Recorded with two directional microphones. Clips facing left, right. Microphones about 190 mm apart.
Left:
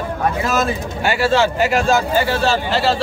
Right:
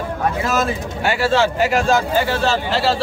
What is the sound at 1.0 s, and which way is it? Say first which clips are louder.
A man's voice: left 1 dB; 5° left (ahead or behind).